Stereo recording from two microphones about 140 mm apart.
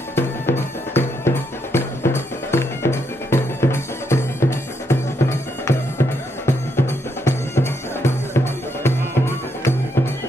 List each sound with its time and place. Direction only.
0.1 s music: 15° left (ahead or behind)